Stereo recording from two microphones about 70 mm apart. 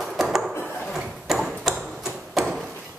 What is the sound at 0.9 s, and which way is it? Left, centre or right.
Tick-tock, centre.